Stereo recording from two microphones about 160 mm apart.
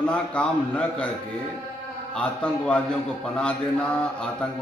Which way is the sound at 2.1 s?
5° left (ahead or behind).